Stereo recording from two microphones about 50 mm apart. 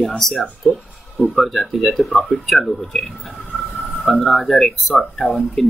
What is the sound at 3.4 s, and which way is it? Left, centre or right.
Vehicle, centre.